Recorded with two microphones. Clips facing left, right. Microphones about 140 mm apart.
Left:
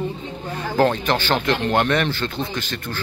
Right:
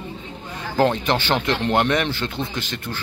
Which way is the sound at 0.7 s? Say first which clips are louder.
Even; 20° right (ahead or behind).